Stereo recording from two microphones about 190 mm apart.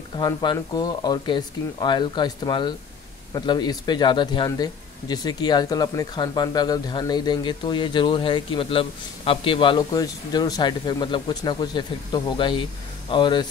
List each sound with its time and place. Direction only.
0.2 s speech: 20° left (ahead or behind)